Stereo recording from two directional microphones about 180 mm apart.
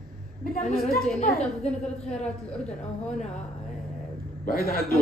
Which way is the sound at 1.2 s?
35° left (ahead or behind).